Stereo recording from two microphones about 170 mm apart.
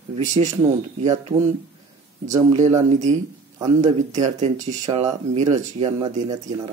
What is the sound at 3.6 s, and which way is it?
Speech, 20° right (ahead or behind).